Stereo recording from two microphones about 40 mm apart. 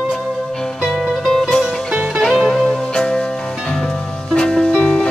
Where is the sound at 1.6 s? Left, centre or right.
Centre.